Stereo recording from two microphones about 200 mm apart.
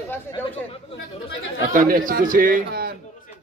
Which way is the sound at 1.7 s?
40° right (ahead or behind).